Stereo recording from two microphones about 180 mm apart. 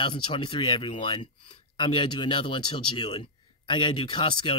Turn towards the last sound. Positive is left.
turn(degrees=30)  # may be behind; listen again after turning